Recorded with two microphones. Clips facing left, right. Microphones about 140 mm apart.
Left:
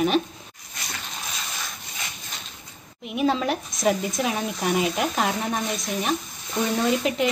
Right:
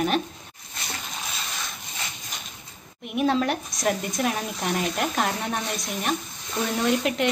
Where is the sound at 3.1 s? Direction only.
Centre (ahead or behind).